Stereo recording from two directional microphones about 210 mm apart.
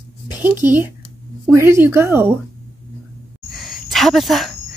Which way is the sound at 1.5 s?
10° right (ahead or behind).